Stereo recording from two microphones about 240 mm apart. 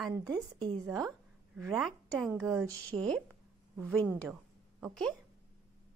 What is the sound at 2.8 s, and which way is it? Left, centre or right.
Speech, centre.